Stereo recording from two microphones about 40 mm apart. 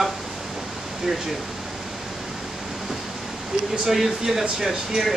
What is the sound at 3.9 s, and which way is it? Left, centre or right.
Speech, centre.